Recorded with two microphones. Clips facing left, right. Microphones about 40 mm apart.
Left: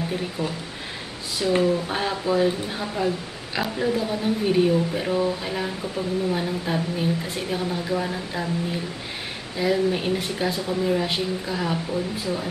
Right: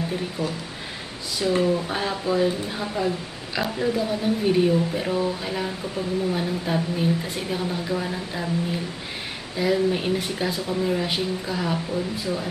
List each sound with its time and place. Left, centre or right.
0.4 s speech: left
1.6 s speech: centre